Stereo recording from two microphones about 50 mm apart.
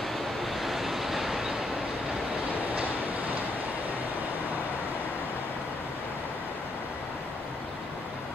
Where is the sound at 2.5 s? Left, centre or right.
Right.